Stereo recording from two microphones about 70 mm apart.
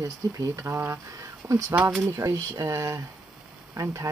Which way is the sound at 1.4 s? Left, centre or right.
Right.